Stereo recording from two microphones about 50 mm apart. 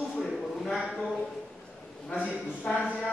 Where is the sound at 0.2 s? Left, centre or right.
Centre.